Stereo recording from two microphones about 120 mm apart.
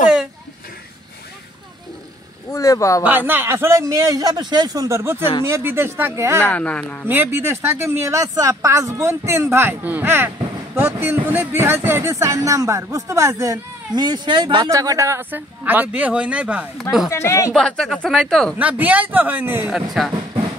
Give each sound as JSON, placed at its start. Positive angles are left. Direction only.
{"t": 2.5, "sound": "speech", "side_deg": 25}
{"t": 3.0, "sound": "speech", "side_deg": -15}
{"t": 6.4, "sound": "speech", "side_deg": 10}
{"t": 7.1, "sound": "speech", "side_deg": -15}
{"t": 17.1, "sound": "speech", "side_deg": 25}
{"t": 17.6, "sound": "speech", "side_deg": 5}
{"t": 18.6, "sound": "a man's voice", "side_deg": -10}
{"t": 19.7, "sound": "speech", "side_deg": 0}